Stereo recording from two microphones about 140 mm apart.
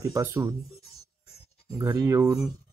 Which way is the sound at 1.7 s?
20° right (ahead or behind).